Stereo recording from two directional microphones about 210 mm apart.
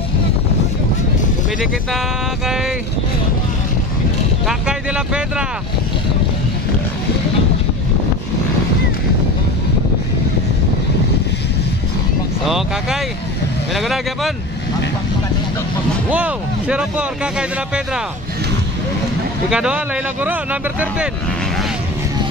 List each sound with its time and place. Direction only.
1.6 s speech: centre (ahead or behind)
4.5 s speech: 5° right (ahead or behind)
12.4 s speech: centre (ahead or behind)
16.1 s speech: 5° right (ahead or behind)
19.5 s speech: 5° right (ahead or behind)